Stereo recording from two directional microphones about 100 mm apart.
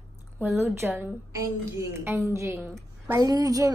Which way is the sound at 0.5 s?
25° right (ahead or behind).